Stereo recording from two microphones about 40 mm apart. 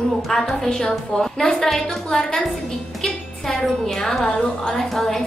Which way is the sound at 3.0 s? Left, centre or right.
Centre.